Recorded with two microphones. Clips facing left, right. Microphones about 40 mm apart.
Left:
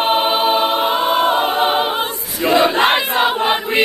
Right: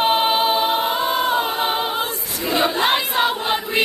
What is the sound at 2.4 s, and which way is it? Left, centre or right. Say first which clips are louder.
Crowd: left 6 dB; left.